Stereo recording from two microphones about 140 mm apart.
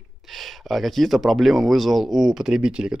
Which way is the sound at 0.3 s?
Centre (ahead or behind).